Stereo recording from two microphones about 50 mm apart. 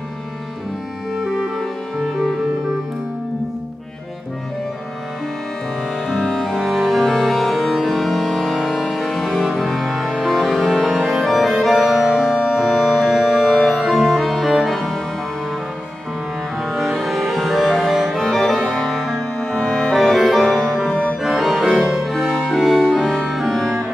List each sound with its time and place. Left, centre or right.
1.1 s music: centre
6.2 s music: centre
6.6 s music: centre
12.2 s organ: centre
14.5 s music: centre
16.6 s music: centre
18.3 s music: centre
18.8 s music: centre
21.2 s organ: centre
21.6 s music: centre